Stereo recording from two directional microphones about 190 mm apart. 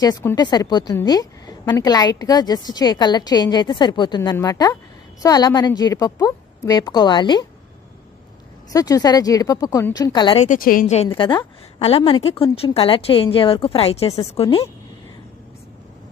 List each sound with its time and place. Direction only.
0.0 s a woman's voice: 15° left (ahead or behind)
8.7 s a woman's voice: 20° left (ahead or behind)
10.4 s a woman's voice: 45° left (ahead or behind)
11.1 s a woman's voice: 25° left (ahead or behind)